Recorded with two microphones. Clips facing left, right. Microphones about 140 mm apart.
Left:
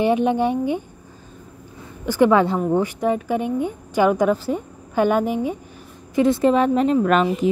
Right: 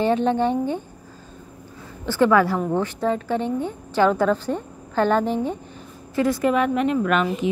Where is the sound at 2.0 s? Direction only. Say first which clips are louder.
Left 2 dB; 15° left (ahead or behind).